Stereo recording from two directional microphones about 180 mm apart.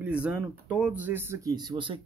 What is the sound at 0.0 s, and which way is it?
A man's voice, 5° right (ahead or behind).